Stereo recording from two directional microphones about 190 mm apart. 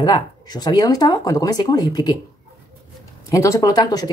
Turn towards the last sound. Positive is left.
turn(degrees=20)  # may be behind; listen again after turning